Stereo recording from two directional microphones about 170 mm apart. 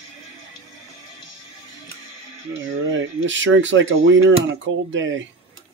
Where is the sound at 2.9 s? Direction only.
90° right.